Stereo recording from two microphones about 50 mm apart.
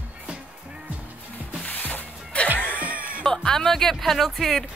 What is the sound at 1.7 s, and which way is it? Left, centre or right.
Music, left.